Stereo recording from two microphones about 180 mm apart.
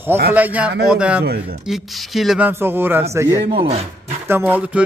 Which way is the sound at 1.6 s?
Centre (ahead or behind).